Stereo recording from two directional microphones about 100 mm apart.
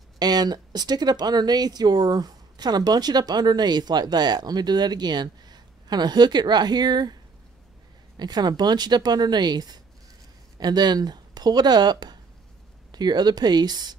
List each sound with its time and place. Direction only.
0.2 s speech: 40° right (ahead or behind)
8.2 s speech: 45° right (ahead or behind)